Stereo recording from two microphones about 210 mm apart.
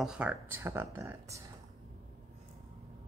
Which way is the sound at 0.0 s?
5° right (ahead or behind).